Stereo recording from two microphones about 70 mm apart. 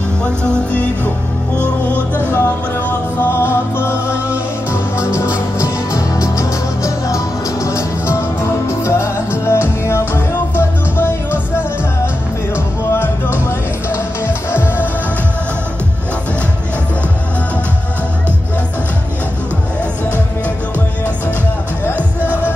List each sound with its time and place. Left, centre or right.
0.2 s music: centre
2.1 s music: left
5.6 s music: left
12.9 s music: left
22.2 s music: left